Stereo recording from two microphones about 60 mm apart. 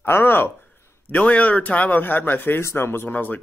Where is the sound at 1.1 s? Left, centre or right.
Left.